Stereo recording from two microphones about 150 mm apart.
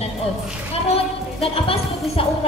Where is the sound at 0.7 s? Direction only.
40° left (ahead or behind).